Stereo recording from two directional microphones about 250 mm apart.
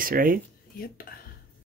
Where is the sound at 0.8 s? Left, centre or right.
Left.